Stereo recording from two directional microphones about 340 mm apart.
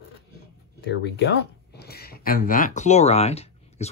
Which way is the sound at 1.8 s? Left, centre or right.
Left.